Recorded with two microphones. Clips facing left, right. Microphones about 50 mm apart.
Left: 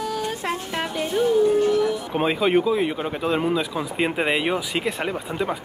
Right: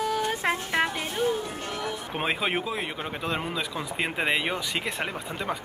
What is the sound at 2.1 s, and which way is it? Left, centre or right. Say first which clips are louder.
Speech: left 7 dB; centre.